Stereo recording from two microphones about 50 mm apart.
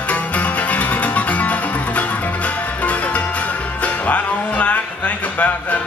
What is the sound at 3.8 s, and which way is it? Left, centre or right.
Music, left.